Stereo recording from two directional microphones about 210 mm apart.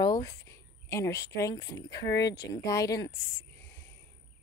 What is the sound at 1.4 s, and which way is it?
Speech, 20° left (ahead or behind).